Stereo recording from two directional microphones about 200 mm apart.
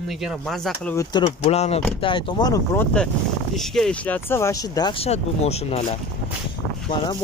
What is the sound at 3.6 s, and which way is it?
Speech, centre (ahead or behind).